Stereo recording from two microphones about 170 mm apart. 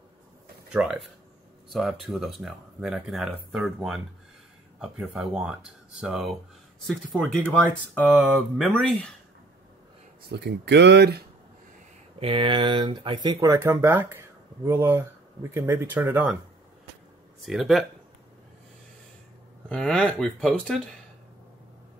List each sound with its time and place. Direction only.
0.7 s speech: 5° right (ahead or behind)
10.3 s speech: 85° right
12.2 s speech: 30° right (ahead or behind); by 16.3 s 10° right (ahead or behind)
17.5 s speech: centre (ahead or behind)
19.7 s speech: 5° left (ahead or behind)